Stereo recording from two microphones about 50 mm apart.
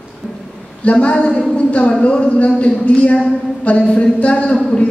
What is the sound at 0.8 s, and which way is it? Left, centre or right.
Speech, left.